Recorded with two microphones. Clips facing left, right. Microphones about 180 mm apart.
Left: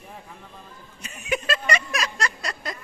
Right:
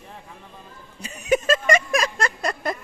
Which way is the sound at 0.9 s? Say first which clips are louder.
Right 7 dB; 35° right (ahead or behind).